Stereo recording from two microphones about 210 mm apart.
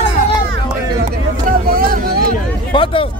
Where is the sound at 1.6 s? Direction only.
45° right (ahead or behind).